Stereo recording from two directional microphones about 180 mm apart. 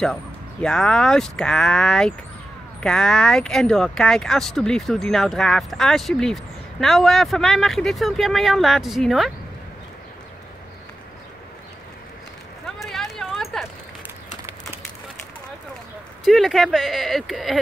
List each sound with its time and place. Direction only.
0.0 s speech: 5° left (ahead or behind)
12.6 s a sound: centre (ahead or behind)
16.3 s speech: centre (ahead or behind)